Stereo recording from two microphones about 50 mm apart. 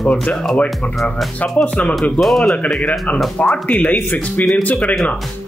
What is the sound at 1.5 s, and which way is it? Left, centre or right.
Speech, left.